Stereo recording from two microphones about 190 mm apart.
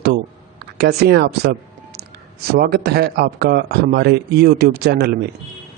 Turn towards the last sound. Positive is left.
turn(degrees=-55)  # may be behind; listen again after turning